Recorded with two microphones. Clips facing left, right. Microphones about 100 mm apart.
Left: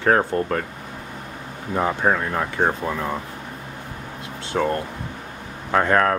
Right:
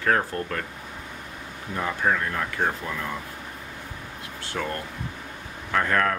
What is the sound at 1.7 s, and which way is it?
Speech, 35° left (ahead or behind).